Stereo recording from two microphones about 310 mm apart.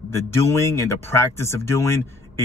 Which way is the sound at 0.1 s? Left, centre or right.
Centre.